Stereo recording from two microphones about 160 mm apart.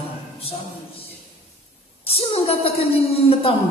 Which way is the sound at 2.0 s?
40° left (ahead or behind).